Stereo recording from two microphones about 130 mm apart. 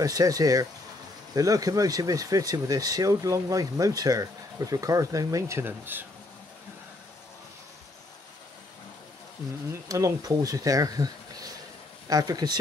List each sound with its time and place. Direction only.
0.0 s speech: 25° right (ahead or behind)
9.7 s speech: 25° right (ahead or behind)